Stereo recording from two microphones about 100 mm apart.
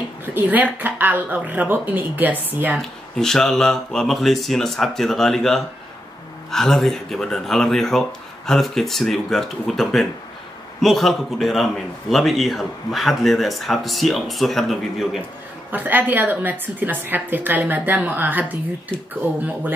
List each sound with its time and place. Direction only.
0.2 s speech: 20° right (ahead or behind)
2.8 s a man's voice: 5° left (ahead or behind)
15.7 s a woman's voice: 20° right (ahead or behind)